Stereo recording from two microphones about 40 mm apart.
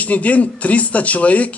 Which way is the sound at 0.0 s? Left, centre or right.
Left.